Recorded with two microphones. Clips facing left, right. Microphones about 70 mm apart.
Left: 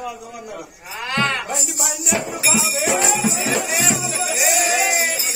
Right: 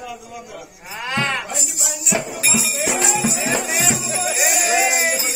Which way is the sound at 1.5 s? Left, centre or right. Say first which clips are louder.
Left 3 dB; left.